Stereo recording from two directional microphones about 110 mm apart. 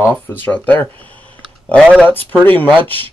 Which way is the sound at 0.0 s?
20° left (ahead or behind).